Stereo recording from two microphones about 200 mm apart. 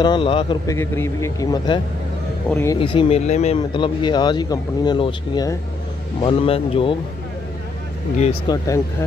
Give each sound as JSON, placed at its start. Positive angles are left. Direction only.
{"t": 0.0, "sound": "speech", "side_deg": 25}
{"t": 0.7, "sound": "speech", "side_deg": 10}
{"t": 2.8, "sound": "speech", "side_deg": 25}
{"t": 3.7, "sound": "speech", "side_deg": 25}
{"t": 8.5, "sound": "speech", "side_deg": 15}